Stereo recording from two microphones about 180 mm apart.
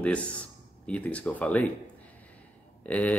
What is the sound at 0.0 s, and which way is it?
Speech, 5° left (ahead or behind).